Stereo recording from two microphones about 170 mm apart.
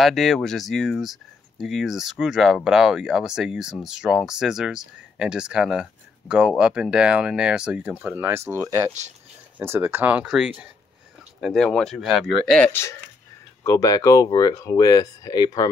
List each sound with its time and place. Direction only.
0.0 s speech: centre (ahead or behind)
13.7 s speech: 20° left (ahead or behind)